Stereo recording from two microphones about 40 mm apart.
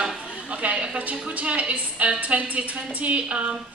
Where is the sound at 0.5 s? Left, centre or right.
Right.